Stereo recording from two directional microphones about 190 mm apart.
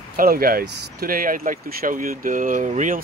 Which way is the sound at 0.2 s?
50° right (ahead or behind).